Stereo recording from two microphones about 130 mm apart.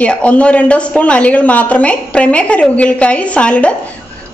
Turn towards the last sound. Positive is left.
turn(degrees=10)  # may be behind; listen again after turning